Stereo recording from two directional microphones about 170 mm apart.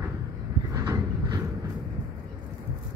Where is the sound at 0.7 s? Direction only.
20° right (ahead or behind).